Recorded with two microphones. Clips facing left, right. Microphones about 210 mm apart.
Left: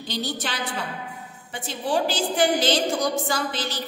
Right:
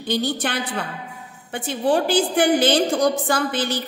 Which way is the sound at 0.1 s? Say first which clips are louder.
Right 7 dB; 55° right (ahead or behind).